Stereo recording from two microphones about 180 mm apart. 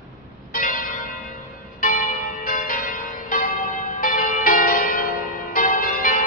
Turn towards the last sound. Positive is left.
turn(degrees=50)  # may be behind; listen again after turning